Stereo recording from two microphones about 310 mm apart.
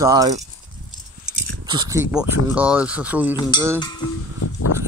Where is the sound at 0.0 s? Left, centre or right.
Centre.